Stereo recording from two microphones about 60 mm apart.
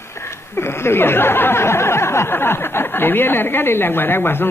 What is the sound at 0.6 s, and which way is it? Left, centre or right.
Speech, left.